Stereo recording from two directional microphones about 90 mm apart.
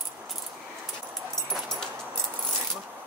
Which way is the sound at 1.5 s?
5° left (ahead or behind).